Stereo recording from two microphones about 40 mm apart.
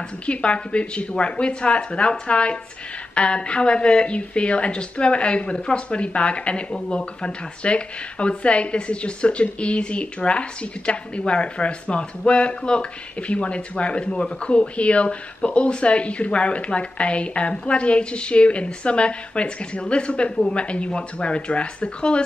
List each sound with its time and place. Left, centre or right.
0.3 s speech: left